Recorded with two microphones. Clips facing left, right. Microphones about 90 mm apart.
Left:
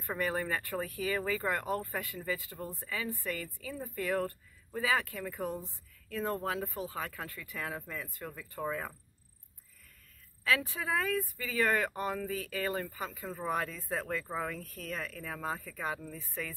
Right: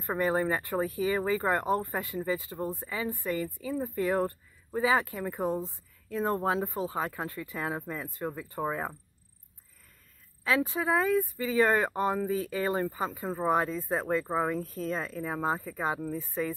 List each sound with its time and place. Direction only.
0.0 s speech: 25° right (ahead or behind)
10.4 s speech: 20° right (ahead or behind)